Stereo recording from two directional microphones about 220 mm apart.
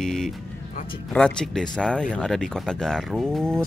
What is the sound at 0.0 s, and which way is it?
Music, centre (ahead or behind).